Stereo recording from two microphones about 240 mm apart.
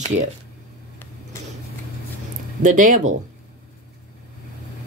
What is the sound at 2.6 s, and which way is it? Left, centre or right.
Speech, right.